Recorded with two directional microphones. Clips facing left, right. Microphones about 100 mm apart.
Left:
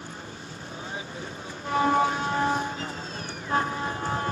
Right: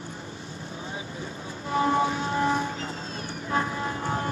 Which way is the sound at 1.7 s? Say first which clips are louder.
Left 1 dB; 30° left (ahead or behind).